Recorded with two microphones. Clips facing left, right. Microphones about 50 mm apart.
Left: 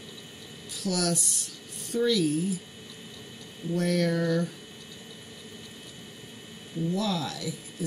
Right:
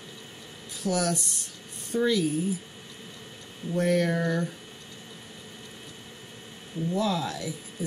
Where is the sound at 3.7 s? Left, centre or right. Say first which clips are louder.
Right 2 dB; centre.